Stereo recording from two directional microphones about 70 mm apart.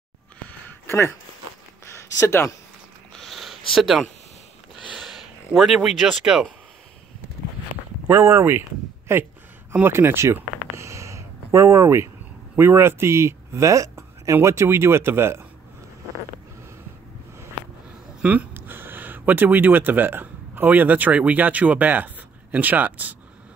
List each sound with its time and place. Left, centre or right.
0.5 s a sound: left
3.2 s a sound: centre
6.0 s speech: centre
8.1 s speech: right
8.4 s speech: right
9.7 s a sound: right
12.5 s speech: right
18.2 s speech: centre
18.5 s speech: right